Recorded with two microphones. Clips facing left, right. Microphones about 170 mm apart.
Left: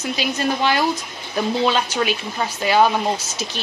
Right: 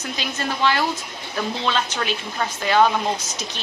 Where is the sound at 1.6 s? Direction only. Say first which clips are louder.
Left 5 dB; 10° left (ahead or behind).